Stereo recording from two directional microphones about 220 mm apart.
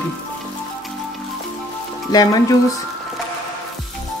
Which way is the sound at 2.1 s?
15° left (ahead or behind).